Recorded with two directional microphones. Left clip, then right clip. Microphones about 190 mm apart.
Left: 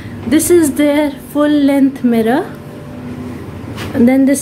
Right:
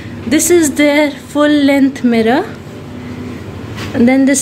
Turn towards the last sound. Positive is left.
turn(degrees=5)  # may be behind; listen again after turning